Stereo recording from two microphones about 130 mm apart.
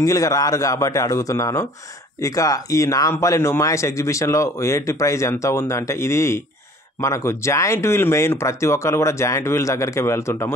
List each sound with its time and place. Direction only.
0.0 s speech: 25° left (ahead or behind)